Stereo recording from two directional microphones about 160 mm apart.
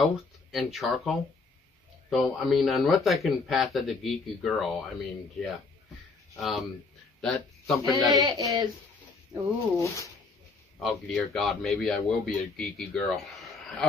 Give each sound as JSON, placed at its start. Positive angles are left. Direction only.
{"t": 0.0, "sound": "speech", "side_deg": 0}
{"t": 6.3, "sound": "speech", "side_deg": 0}
{"t": 8.1, "sound": "speech", "side_deg": -25}
{"t": 10.8, "sound": "speech", "side_deg": 0}